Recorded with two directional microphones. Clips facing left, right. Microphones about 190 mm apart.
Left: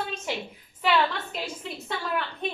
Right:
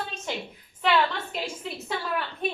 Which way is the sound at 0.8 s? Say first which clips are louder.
Even; centre (ahead or behind).